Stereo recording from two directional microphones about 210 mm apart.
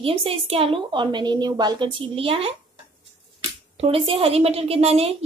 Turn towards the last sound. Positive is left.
turn(degrees=-30)  # may be behind; listen again after turning